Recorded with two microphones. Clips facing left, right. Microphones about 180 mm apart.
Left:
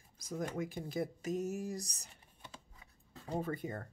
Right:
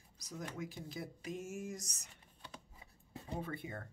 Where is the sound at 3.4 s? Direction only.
40° left (ahead or behind).